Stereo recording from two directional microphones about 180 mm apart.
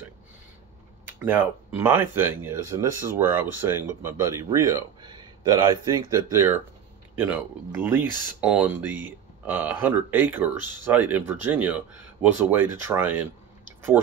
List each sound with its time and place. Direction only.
1.2 s speech: 10° right (ahead or behind)